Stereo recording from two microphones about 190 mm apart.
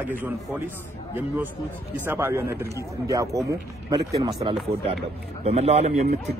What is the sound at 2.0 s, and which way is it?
A man's voice, 10° right (ahead or behind).